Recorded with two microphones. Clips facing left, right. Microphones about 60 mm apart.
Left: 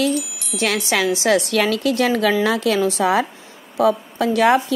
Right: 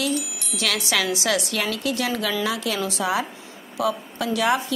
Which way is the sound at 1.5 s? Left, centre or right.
Left.